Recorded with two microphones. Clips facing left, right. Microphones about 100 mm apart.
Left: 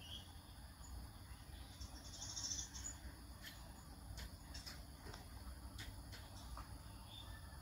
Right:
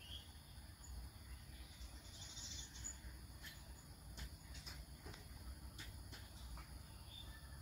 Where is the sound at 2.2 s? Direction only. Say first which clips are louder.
Left 3 dB; 30° left (ahead or behind).